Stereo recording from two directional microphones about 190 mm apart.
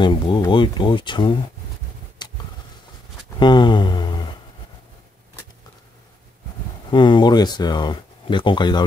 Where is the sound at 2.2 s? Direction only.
25° left (ahead or behind).